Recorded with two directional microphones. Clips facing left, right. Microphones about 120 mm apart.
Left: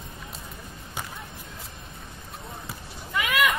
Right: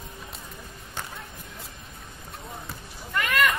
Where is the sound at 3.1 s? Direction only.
5° left (ahead or behind).